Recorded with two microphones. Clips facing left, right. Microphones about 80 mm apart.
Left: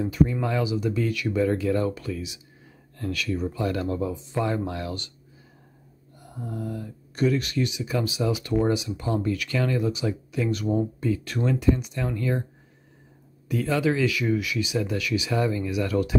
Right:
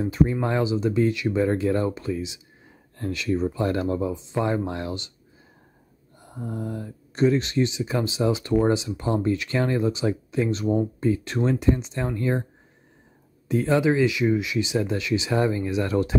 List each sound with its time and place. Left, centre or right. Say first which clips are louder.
0.0 s speech: right 1 dB; right
6.1 s speech: right 2 dB; right
13.5 s speech: right 3 dB; right